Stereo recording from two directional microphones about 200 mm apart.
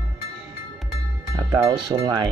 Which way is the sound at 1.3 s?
20° right (ahead or behind).